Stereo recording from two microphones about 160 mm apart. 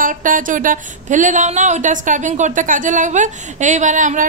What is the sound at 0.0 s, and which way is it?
Speech, 55° right (ahead or behind).